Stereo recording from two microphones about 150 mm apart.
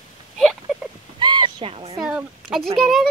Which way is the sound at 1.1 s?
30° right (ahead or behind).